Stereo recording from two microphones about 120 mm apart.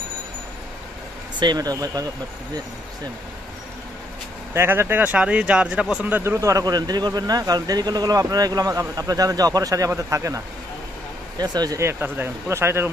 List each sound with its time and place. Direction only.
1.4 s speech: 35° right (ahead or behind)
4.6 s speech: 20° right (ahead or behind)
11.8 s speech: 20° right (ahead or behind)